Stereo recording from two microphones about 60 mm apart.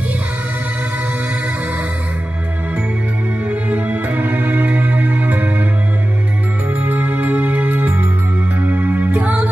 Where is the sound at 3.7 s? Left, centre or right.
Right.